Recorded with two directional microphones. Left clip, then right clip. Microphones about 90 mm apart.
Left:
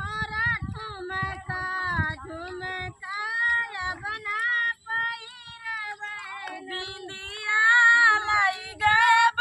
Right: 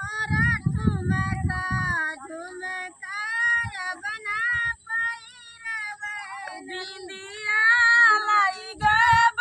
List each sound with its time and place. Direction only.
0.0 s child singing: 30° right (ahead or behind)
5.7 s cat: 30° right (ahead or behind)
7.4 s cat: centre (ahead or behind)
8.3 s child singing: 35° left (ahead or behind)